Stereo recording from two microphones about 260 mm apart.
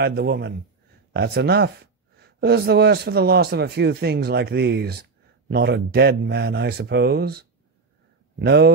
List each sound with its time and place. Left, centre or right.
0.0 s speech: right